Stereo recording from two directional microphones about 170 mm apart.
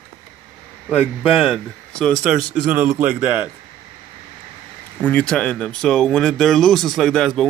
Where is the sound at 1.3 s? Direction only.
Centre (ahead or behind).